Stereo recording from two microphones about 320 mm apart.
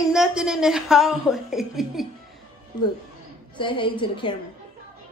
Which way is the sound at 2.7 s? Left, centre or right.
Centre.